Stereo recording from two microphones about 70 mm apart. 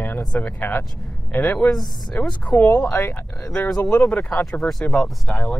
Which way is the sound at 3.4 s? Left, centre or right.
Centre.